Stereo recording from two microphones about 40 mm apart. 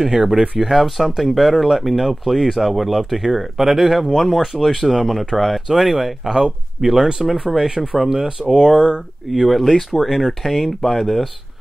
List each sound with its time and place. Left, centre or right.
0.1 s speech: centre
0.7 s speech: centre
9.3 s speech: centre
9.8 s speech: centre